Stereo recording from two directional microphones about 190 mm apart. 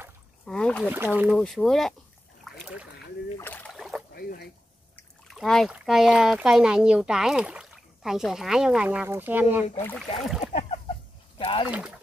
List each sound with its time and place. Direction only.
0.5 s speech: 5° left (ahead or behind)
0.8 s speech: 10° right (ahead or behind)
1.4 s speech: centre (ahead or behind)
2.6 s boat: 5° right (ahead or behind)
3.3 s boat: 10° left (ahead or behind)
3.7 s boat: centre (ahead or behind)
4.1 s a sound: 50° left (ahead or behind)
5.3 s speech: centre (ahead or behind)
10.4 s a sound: 35° left (ahead or behind)
11.3 s rowboat: 25° left (ahead or behind)
11.6 s speech: 5° right (ahead or behind)